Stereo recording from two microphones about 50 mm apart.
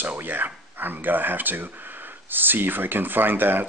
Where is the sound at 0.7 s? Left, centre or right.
Right.